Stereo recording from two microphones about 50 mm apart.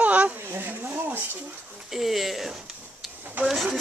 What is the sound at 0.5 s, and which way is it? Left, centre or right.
Speech, right.